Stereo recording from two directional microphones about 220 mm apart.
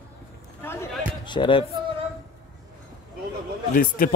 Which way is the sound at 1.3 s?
20° left (ahead or behind).